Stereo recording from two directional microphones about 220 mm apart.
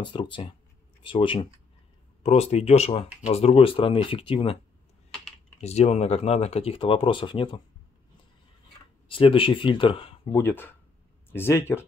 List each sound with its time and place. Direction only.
0.0 s speech: 20° left (ahead or behind)
5.6 s speech: 30° left (ahead or behind)
9.1 s speech: 25° left (ahead or behind)
10.3 s speech: 10° left (ahead or behind)